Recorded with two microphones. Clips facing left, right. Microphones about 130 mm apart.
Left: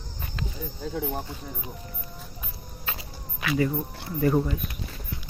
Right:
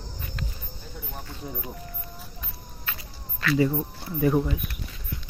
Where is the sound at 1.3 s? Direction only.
25° left (ahead or behind).